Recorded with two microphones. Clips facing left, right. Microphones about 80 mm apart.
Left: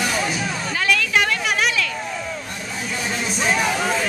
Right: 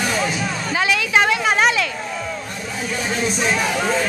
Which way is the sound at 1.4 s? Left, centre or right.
Right.